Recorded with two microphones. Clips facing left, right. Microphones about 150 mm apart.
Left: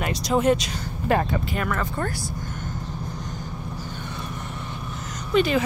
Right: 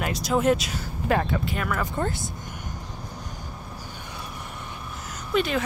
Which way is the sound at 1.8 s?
15° right (ahead or behind).